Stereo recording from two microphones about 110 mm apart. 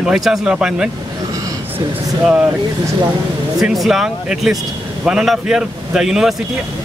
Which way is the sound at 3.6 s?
Centre (ahead or behind).